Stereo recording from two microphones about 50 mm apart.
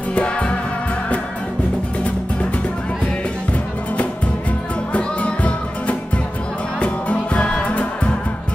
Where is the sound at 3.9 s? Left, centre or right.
Left.